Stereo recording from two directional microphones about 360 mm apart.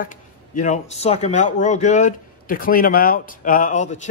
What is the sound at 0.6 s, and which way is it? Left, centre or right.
A man's voice, centre.